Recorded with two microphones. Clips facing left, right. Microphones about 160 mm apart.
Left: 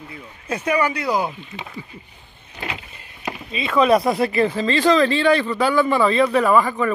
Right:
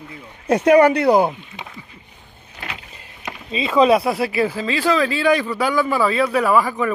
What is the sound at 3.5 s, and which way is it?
Speech, 30° right (ahead or behind).